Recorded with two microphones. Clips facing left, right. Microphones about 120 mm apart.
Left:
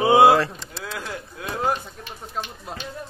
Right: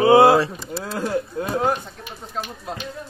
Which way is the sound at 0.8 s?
40° right (ahead or behind).